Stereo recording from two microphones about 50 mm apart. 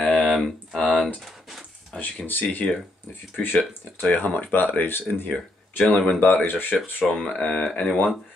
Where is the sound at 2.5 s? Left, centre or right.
Left.